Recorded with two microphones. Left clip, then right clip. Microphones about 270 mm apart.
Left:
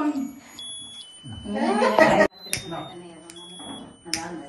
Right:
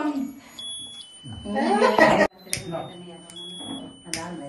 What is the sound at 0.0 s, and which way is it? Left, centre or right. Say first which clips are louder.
Smoke detector: left 1 dB; centre.